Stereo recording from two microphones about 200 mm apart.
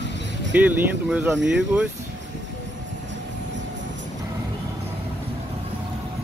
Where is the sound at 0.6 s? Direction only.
10° right (ahead or behind).